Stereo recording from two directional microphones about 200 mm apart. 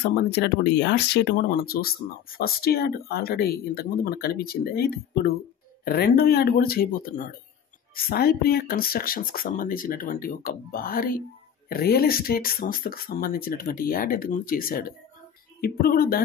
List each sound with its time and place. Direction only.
0.1 s speech: 55° left (ahead or behind)